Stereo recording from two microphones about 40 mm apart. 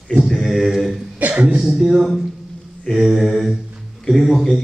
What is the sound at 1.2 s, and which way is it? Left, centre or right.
Cough, right.